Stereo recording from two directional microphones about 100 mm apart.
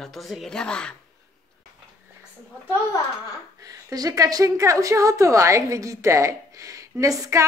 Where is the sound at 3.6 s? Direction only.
40° right (ahead or behind).